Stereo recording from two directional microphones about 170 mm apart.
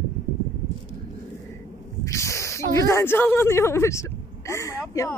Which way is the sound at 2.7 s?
15° left (ahead or behind).